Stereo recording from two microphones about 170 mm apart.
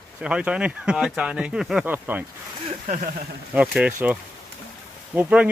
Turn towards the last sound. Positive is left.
turn(degrees=-5)  # may be behind; listen again after turning